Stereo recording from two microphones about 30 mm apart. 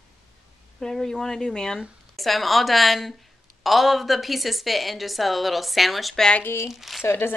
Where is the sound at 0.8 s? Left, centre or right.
Centre.